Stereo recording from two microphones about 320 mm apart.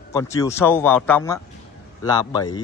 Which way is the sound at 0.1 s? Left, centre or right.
Centre.